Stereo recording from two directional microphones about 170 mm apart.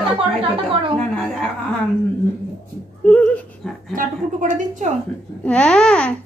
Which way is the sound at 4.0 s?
50° right (ahead or behind).